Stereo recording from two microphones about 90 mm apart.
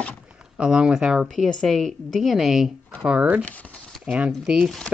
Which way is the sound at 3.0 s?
15° right (ahead or behind).